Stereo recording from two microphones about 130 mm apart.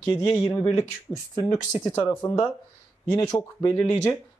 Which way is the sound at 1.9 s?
20° left (ahead or behind).